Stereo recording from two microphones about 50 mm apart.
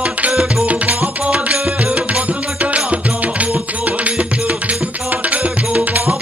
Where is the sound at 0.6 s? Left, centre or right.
Right.